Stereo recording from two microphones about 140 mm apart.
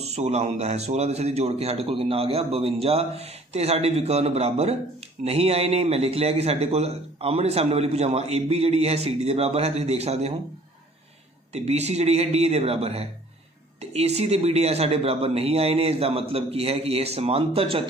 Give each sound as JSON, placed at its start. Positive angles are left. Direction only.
{"t": 0.0, "sound": "a man's voice", "side_deg": -50}
{"t": 11.5, "sound": "a man's voice", "side_deg": -50}